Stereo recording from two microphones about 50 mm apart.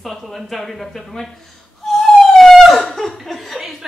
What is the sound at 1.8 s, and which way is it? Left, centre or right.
Laughter, centre.